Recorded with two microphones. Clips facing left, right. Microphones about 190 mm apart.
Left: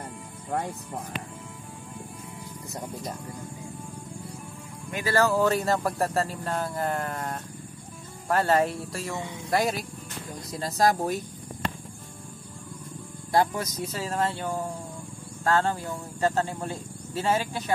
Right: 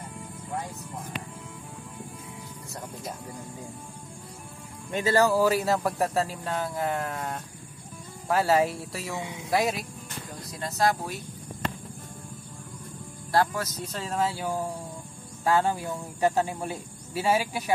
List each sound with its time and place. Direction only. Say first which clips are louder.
0.5 s speech: left 5 dB; 55° left (ahead or behind)
4.9 s speech: right 1 dB; 20° right (ahead or behind); by 9.8 s centre (ahead or behind)
10.6 s speech: left 2 dB; 40° left (ahead or behind)
13.3 s speech: left 1 dB; 15° left (ahead or behind)
13.9 s speech: even; centre (ahead or behind)